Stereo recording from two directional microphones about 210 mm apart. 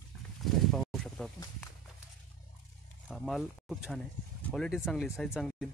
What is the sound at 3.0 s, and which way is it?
Speech, centre (ahead or behind).